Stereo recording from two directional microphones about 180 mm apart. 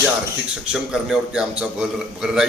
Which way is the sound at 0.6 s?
5° right (ahead or behind).